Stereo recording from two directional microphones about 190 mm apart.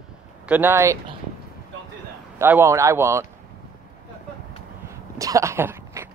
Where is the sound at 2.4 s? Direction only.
15° right (ahead or behind).